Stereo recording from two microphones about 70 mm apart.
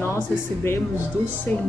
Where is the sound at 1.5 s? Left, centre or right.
Left.